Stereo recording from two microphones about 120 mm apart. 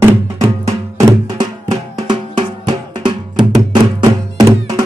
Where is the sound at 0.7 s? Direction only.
30° right (ahead or behind).